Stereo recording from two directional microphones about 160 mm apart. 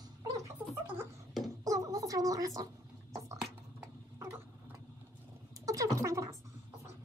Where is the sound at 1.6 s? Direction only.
20° right (ahead or behind).